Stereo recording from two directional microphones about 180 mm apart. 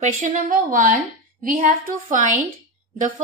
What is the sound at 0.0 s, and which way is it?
A woman's voice, 45° right (ahead or behind).